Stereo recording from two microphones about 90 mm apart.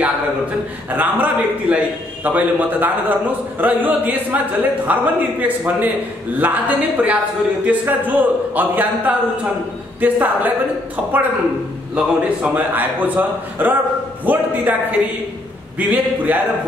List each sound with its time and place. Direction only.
0.9 s a man's voice: 20° right (ahead or behind)
11.9 s a man's voice: 15° right (ahead or behind)